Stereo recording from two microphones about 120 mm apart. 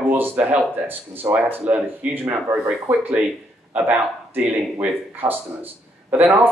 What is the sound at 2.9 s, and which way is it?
Speech, 15° right (ahead or behind).